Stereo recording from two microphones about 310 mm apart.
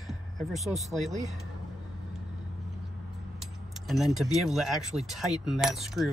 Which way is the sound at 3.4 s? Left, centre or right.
Centre.